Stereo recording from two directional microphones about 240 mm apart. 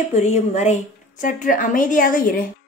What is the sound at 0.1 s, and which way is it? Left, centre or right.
A woman's voice, left.